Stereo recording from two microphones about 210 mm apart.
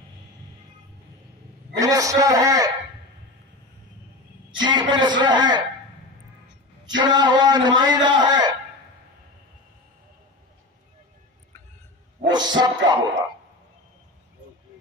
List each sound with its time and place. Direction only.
1.8 s a man's voice: 15° right (ahead or behind)
4.6 s a man's voice: 20° right (ahead or behind)
7.0 s a man's voice: 20° right (ahead or behind)
12.3 s speech: 20° right (ahead or behind)